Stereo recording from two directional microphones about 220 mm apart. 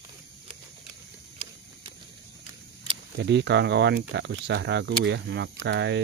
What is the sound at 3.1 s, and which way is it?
Speech, 50° right (ahead or behind).